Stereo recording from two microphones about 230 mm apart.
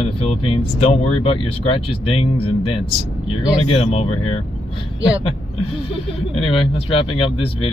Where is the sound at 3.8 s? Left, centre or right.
Left.